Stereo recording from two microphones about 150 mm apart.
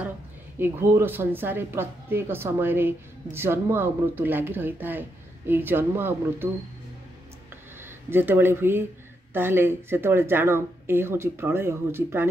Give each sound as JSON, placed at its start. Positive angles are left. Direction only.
{"t": 0.6, "sound": "a woman's voice", "side_deg": -15}
{"t": 8.1, "sound": "a woman's voice", "side_deg": -15}